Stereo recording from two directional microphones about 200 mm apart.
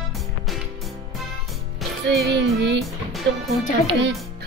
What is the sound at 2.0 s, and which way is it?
Music, 60° right (ahead or behind).